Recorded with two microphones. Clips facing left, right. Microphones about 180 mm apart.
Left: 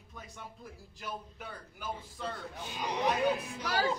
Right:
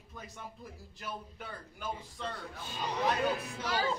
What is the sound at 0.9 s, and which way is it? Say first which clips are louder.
A man's voice: left 1 dB; centre (ahead or behind).